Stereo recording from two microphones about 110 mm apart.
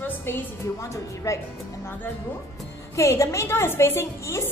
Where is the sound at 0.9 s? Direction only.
30° left (ahead or behind).